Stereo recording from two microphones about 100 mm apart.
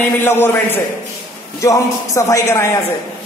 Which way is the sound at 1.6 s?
35° left (ahead or behind).